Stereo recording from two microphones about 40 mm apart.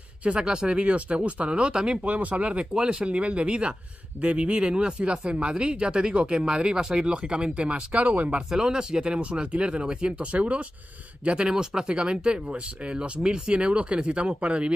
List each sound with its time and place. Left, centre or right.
0.2 s speech: right
2.0 s speech: right
2.6 s speech: right
8.0 s speech: right
8.4 s speech: right